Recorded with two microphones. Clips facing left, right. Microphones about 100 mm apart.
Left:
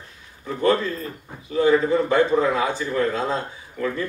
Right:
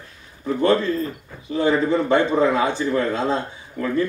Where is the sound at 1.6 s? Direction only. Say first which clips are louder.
Left 1 dB; 30° right (ahead or behind).